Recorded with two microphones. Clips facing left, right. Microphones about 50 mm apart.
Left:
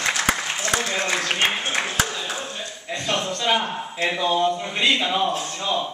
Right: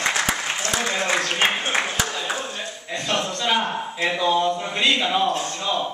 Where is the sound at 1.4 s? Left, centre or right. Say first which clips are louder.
Right 1 dB; centre.